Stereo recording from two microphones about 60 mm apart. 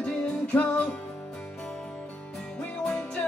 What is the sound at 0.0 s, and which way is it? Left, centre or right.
Music, centre.